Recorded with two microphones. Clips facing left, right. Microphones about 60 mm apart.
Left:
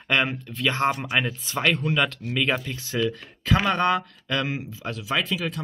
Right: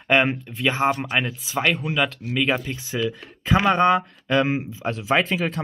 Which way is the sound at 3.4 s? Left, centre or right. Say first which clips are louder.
Right 4 dB; right.